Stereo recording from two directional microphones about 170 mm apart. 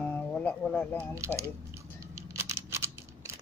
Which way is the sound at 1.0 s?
15° right (ahead or behind).